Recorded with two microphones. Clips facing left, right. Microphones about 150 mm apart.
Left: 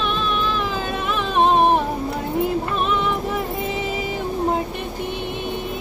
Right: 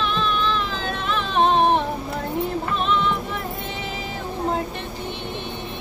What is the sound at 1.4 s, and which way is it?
Music, 5° left (ahead or behind).